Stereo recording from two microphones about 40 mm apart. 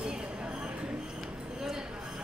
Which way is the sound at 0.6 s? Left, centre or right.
Right.